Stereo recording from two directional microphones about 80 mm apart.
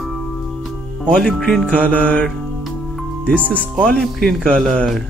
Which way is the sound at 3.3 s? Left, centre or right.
Right.